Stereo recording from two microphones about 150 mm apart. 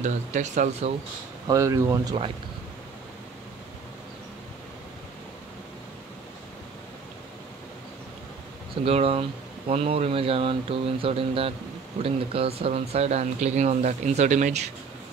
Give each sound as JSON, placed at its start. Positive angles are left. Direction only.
{"t": 0.0, "sound": "speech", "side_deg": -55}
{"t": 1.5, "sound": "speech", "side_deg": -20}
{"t": 8.8, "sound": "speech", "side_deg": -40}